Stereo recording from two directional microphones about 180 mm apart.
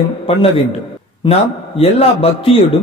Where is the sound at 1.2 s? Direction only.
35° left (ahead or behind).